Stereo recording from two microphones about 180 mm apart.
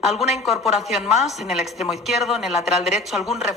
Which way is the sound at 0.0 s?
Centre (ahead or behind).